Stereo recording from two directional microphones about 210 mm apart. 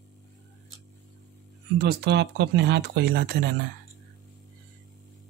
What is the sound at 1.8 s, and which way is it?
Speech, 50° right (ahead or behind).